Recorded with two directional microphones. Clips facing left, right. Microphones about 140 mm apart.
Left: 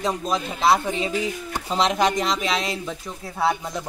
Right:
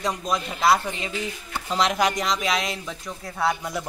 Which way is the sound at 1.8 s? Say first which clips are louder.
Left 3 dB; centre (ahead or behind).